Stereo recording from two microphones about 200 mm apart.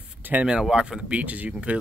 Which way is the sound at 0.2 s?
10° right (ahead or behind).